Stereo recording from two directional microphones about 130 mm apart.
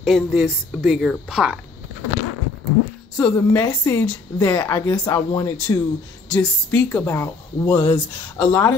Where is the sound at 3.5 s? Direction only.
25° left (ahead or behind).